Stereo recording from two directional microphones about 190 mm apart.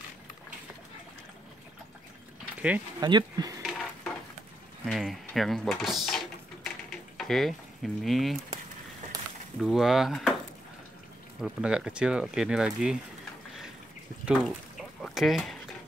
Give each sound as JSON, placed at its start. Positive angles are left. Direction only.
{"t": 3.0, "sound": "speech", "side_deg": -20}
{"t": 3.6, "sound": "dishes", "side_deg": 0}
{"t": 4.8, "sound": "speech", "side_deg": 0}
{"t": 9.6, "sound": "speech", "side_deg": 0}
{"t": 11.4, "sound": "speech", "side_deg": -5}
{"t": 14.2, "sound": "a sound", "side_deg": -5}